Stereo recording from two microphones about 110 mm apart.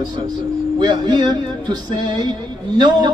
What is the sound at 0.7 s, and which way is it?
A man's voice, 40° right (ahead or behind).